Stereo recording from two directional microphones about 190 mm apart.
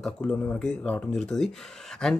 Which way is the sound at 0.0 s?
5° left (ahead or behind).